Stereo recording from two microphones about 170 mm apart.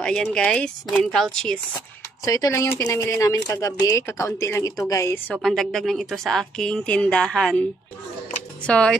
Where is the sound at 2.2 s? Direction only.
20° left (ahead or behind).